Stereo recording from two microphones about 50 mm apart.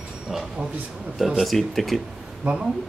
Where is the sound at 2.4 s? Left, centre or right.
Right.